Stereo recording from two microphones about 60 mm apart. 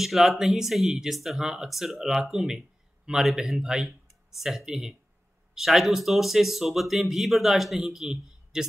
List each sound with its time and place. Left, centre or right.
0.0 s speech: centre